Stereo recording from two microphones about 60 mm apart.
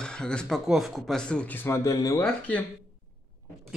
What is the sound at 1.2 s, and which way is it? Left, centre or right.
Speech, centre.